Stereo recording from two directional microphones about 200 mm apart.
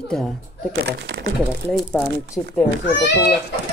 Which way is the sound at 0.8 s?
60° right (ahead or behind).